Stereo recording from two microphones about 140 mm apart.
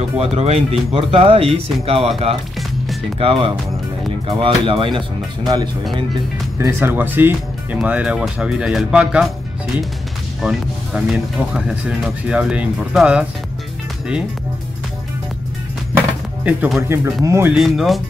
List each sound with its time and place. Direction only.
0.2 s speech: 45° right (ahead or behind)
6.6 s speech: 15° right (ahead or behind)
10.4 s speech: 5° right (ahead or behind)
16.4 s speech: centre (ahead or behind)
16.8 s speech: 20° right (ahead or behind)
17.5 s speech: centre (ahead or behind)